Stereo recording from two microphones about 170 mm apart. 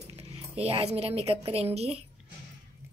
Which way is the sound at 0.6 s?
35° right (ahead or behind).